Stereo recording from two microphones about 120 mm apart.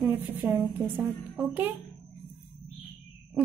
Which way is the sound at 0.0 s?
15° right (ahead or behind).